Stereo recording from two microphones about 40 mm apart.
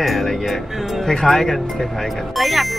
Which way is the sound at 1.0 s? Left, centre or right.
Centre.